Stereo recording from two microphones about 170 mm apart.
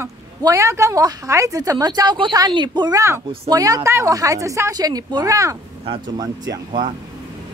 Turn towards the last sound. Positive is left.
turn(degrees=-25)  # may be behind; listen again after turning